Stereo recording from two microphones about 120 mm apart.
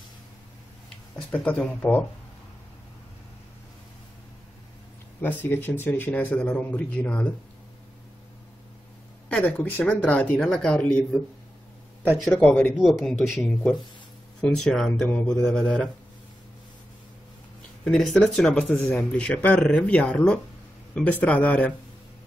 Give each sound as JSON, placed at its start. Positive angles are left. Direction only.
{"t": 1.1, "sound": "speech", "side_deg": 10}
{"t": 5.4, "sound": "speech", "side_deg": 15}
{"t": 9.3, "sound": "speech", "side_deg": 15}
{"t": 12.2, "sound": "speech", "side_deg": 10}
{"t": 12.7, "sound": "speech", "side_deg": 0}
{"t": 15.0, "sound": "speech", "side_deg": 15}
{"t": 15.4, "sound": "speech", "side_deg": 5}
{"t": 17.8, "sound": "speech", "side_deg": 5}